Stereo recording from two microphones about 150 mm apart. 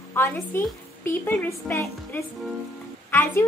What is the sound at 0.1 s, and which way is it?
A woman's voice, 15° left (ahead or behind).